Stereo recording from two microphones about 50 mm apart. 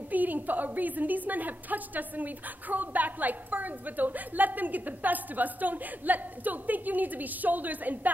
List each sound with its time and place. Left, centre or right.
0.1 s a woman's voice: right